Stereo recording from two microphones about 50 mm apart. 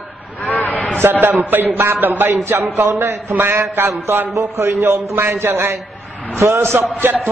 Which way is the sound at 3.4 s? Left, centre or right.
Right.